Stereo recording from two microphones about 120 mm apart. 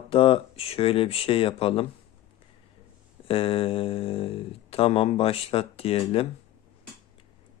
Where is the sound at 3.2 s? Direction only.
50° left (ahead or behind).